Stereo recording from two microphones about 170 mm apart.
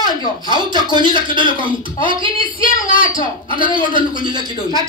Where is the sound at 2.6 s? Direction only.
55° left (ahead or behind).